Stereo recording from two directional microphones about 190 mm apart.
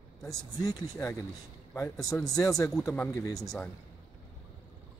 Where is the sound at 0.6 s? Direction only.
20° left (ahead or behind).